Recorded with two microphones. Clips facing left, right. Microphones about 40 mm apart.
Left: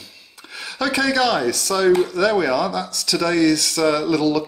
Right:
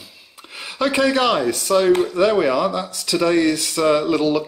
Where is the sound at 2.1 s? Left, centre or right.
Right.